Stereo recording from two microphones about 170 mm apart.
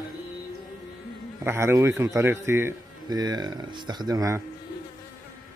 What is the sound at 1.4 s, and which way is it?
Speech, 15° right (ahead or behind).